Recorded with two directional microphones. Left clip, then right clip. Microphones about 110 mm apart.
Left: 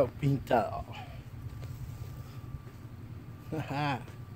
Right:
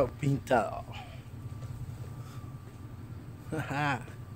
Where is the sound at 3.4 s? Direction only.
20° left (ahead or behind).